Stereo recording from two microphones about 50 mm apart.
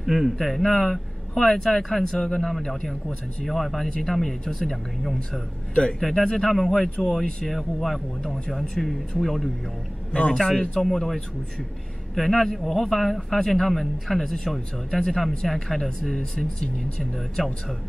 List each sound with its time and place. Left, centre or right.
0.0 s speech: centre
0.4 s speech: centre
5.8 s speech: centre
10.1 s speech: centre